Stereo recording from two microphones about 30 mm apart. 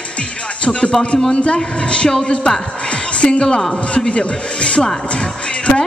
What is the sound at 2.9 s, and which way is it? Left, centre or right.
Music, left.